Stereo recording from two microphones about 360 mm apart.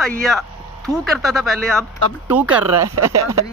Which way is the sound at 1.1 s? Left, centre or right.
Centre.